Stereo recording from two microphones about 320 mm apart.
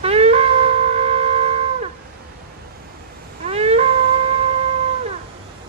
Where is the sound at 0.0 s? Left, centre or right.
Centre.